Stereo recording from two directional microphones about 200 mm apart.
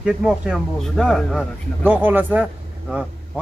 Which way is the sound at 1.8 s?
10° right (ahead or behind).